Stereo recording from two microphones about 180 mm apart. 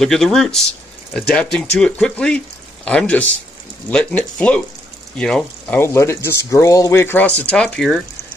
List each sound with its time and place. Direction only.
0.0 s speech: centre (ahead or behind)